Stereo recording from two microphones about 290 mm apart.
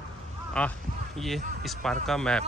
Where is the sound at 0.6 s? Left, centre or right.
Centre.